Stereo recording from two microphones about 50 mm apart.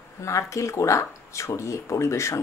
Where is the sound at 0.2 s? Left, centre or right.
Left.